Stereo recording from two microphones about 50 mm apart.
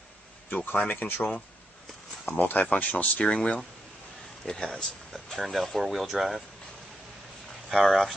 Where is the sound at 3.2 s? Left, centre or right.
Centre.